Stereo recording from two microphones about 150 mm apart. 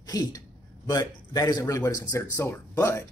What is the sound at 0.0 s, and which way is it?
A man's voice, 25° left (ahead or behind).